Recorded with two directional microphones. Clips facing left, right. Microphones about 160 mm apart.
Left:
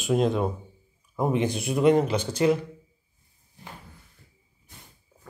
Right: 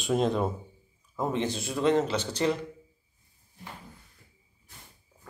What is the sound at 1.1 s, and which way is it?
Speech, 15° left (ahead or behind).